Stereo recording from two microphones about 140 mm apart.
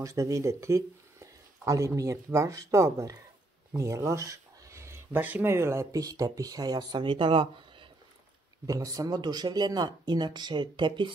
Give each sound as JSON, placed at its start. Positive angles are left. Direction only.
{"t": 0.0, "sound": "speech", "side_deg": -20}
{"t": 8.6, "sound": "speech", "side_deg": -25}